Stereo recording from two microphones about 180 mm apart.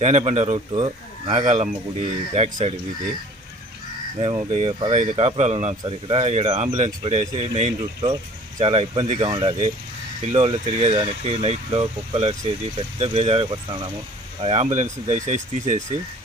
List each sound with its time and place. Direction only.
0.0 s speech: 40° right (ahead or behind)
0.7 s speech: 30° right (ahead or behind)
4.2 s speech: 30° right (ahead or behind)
14.4 s speech: 35° right (ahead or behind)